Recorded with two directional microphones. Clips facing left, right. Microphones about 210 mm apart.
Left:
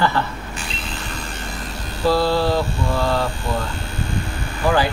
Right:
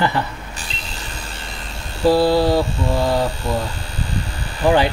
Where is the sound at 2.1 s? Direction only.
15° right (ahead or behind).